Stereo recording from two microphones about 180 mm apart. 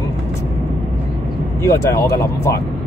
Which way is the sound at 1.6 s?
15° left (ahead or behind).